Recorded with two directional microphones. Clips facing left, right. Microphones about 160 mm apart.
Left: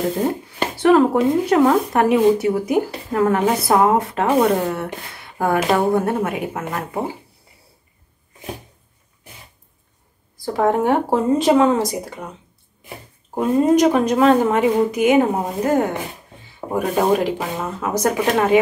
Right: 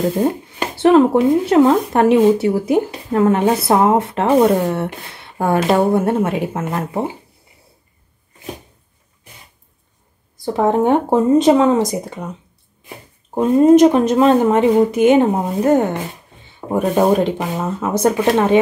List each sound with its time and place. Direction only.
0.7 s speech: 25° right (ahead or behind)
10.4 s speech: 20° right (ahead or behind)
13.3 s speech: 25° right (ahead or behind)